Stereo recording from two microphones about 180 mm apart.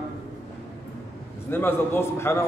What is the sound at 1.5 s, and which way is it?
Speech, 10° left (ahead or behind).